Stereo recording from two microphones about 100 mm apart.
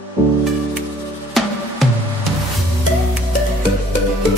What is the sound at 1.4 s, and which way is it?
Music, centre (ahead or behind).